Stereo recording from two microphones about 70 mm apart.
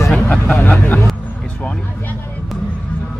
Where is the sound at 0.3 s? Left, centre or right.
Left.